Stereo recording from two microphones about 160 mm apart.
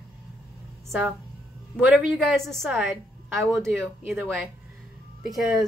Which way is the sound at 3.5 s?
20° right (ahead or behind).